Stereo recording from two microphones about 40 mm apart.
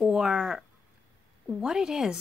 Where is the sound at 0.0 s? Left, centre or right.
Centre.